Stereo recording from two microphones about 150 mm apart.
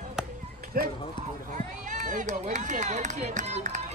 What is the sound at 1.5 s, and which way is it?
Speech, 55° right (ahead or behind).